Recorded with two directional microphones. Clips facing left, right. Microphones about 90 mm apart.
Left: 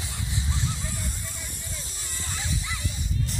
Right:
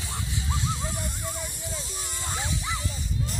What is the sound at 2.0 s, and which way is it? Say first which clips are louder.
Bow-wow: right 2 dB; 25° right (ahead or behind).